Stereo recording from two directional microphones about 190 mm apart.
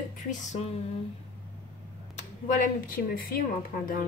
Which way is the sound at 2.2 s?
40° left (ahead or behind).